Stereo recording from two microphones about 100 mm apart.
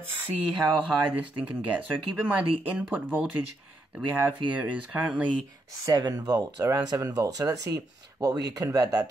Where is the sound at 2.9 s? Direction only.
20° right (ahead or behind).